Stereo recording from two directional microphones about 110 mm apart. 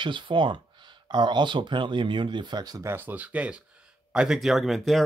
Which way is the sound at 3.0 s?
15° right (ahead or behind).